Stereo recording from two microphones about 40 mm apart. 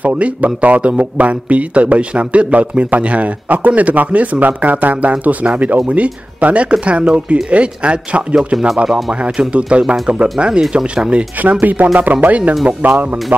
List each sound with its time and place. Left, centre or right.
0.0 s a man's voice: right
9.5 s speech: right
11.6 s speech: right